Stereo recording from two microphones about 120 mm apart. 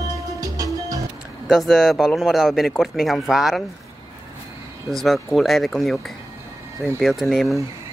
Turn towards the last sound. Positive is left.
turn(degrees=0)  # may be behind; listen again after turning